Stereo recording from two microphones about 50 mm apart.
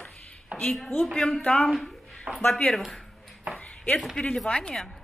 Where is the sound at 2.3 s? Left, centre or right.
Right.